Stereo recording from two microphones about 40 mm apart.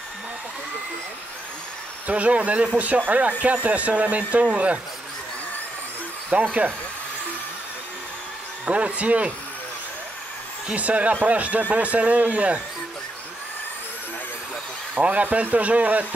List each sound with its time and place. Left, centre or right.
2.0 s speech: right
6.3 s speech: right
8.6 s speech: right
10.7 s speech: right
15.0 s speech: right